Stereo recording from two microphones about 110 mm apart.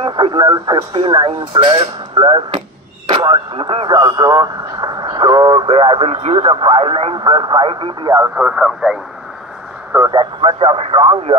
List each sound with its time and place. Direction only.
0.0 s speech: 50° right (ahead or behind)
8.4 s speech: 10° right (ahead or behind)
10.1 s speech: 55° right (ahead or behind)